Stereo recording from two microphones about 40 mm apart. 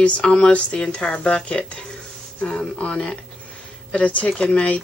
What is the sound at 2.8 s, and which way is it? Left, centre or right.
Speech, left.